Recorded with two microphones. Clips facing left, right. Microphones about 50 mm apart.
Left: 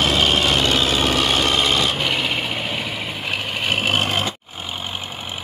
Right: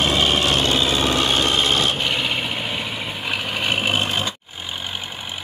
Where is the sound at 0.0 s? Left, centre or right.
Left.